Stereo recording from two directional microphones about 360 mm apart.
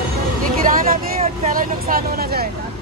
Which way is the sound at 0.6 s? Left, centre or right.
Right.